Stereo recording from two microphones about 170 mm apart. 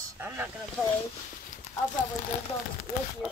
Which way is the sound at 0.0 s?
10° right (ahead or behind).